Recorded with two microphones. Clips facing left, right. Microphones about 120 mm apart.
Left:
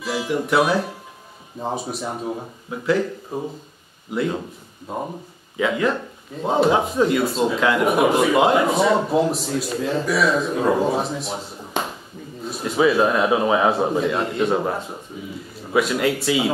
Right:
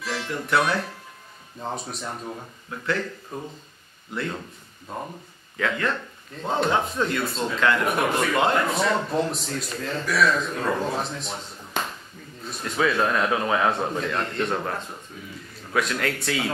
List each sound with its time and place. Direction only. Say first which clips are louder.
0.0 s speech: left 7 dB; 5° left (ahead or behind)
3.3 s speech: left 7 dB; 25° left (ahead or behind)
4.1 s speech: left 7 dB; 5° left (ahead or behind)
4.4 s speech: left 7 dB; 15° left (ahead or behind)